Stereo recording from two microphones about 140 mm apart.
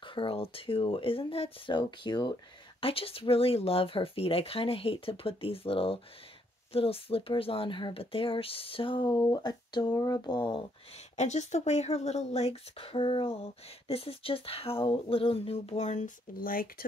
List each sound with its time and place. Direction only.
0.0 s speech: 35° left (ahead or behind)
2.8 s speech: 40° left (ahead or behind)
11.1 s speech: 55° left (ahead or behind); by 16.8 s 90° left